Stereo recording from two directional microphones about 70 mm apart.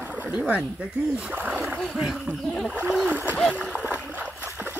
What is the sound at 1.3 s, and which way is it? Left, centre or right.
Speech, right.